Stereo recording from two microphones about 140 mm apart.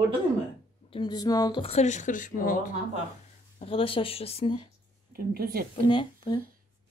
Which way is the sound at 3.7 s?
40° left (ahead or behind).